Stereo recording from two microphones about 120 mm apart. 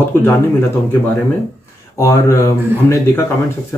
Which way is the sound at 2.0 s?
25° left (ahead or behind).